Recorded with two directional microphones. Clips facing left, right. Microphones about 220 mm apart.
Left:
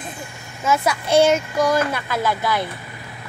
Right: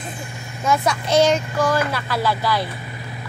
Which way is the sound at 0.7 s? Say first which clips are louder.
Even; 10° left (ahead or behind).